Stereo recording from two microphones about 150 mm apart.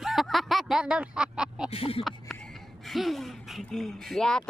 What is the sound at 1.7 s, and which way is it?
Speech, 40° left (ahead or behind).